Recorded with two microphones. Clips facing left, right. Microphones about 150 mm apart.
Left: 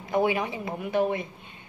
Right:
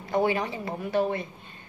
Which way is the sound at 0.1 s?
10° left (ahead or behind).